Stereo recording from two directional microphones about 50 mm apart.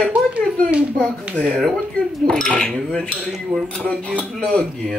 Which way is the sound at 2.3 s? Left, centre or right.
Centre.